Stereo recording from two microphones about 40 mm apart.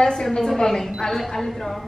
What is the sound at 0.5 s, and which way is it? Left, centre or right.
A woman's voice, centre.